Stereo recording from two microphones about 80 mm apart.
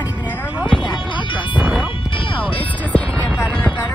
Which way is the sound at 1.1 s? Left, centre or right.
Left.